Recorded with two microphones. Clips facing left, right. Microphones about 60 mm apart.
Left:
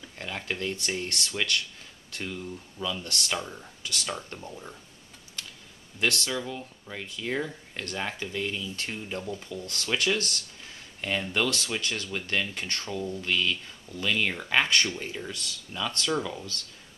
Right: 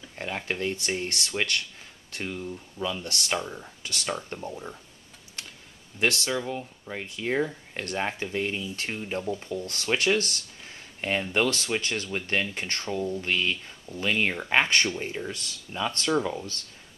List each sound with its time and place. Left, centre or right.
0.2 s speech: centre
2.8 s speech: right
3.3 s speech: centre
5.9 s speech: right